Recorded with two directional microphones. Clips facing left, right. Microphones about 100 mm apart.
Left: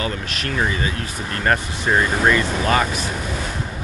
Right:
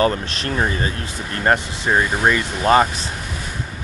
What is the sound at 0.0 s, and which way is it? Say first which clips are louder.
Speech: right 6 dB; 35° right (ahead or behind).